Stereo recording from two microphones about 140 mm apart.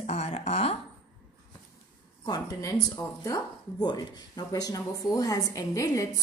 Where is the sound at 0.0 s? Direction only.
50° left (ahead or behind).